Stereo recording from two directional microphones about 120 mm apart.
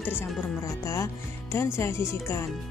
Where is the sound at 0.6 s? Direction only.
25° left (ahead or behind).